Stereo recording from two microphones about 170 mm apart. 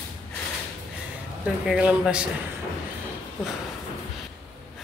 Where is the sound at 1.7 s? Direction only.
5° right (ahead or behind).